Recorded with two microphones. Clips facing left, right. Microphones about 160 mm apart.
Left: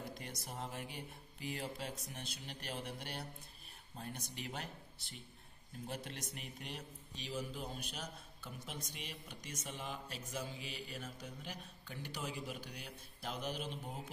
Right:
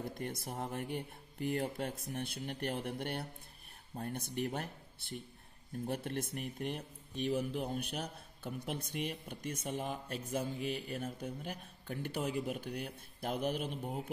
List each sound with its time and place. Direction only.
0.2 s speech: 55° right (ahead or behind)